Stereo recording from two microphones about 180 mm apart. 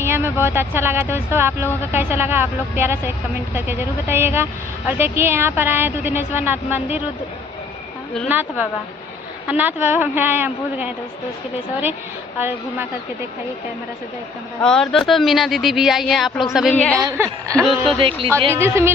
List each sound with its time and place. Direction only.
0.0 s a woman's voice: 15° right (ahead or behind)
8.3 s a woman's voice: 10° right (ahead or behind)
12.4 s a woman's voice: 10° right (ahead or behind)
14.6 s speech: 5° left (ahead or behind)
17.0 s a woman's voice: 15° right (ahead or behind)
17.9 s music: 30° right (ahead or behind)